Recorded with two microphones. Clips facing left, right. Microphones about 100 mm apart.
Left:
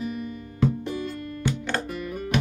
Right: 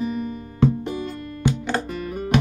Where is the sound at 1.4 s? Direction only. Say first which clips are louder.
Right 5 dB; 10° right (ahead or behind).